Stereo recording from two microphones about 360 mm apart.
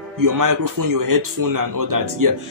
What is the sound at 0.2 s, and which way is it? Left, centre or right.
Speech, right.